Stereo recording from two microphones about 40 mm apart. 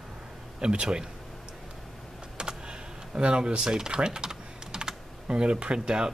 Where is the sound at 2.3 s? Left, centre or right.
Right.